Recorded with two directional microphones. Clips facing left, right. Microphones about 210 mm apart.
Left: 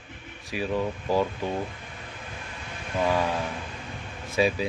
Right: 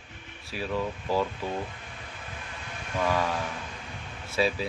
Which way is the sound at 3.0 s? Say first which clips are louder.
Left 2 dB; 15° left (ahead or behind).